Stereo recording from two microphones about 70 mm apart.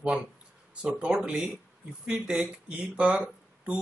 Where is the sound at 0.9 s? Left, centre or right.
Centre.